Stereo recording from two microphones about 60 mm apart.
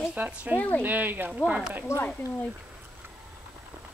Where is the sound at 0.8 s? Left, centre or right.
Right.